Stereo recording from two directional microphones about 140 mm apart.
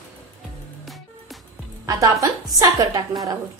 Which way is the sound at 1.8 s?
25° right (ahead or behind).